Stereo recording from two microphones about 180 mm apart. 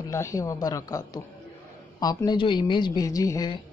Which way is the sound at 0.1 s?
15° left (ahead or behind).